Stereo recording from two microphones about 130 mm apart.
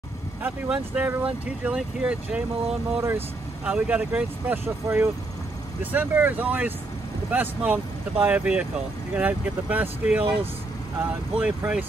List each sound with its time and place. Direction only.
0.4 s speech: 10° right (ahead or behind)